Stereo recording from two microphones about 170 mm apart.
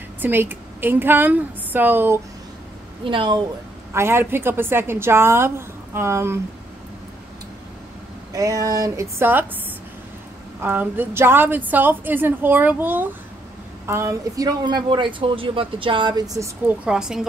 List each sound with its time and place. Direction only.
0.2 s a woman's voice: 10° right (ahead or behind)
3.1 s speech: 30° right (ahead or behind)
3.9 s a woman's voice: 15° right (ahead or behind)
8.3 s speech: 20° right (ahead or behind)
10.6 s a woman's voice: 10° right (ahead or behind)
16.6 s a woman's voice: 5° right (ahead or behind)